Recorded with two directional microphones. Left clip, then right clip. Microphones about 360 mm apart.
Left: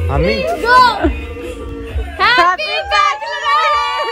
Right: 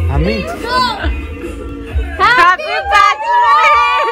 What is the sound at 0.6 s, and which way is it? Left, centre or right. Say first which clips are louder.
Speech: left 6 dB; centre.